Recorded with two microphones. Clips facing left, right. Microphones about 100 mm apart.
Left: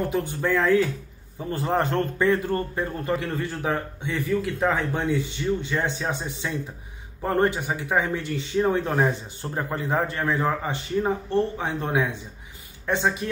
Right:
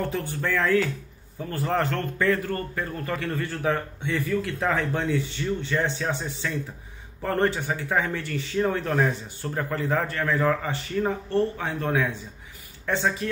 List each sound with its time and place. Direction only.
0.1 s a man's voice: 20° left (ahead or behind)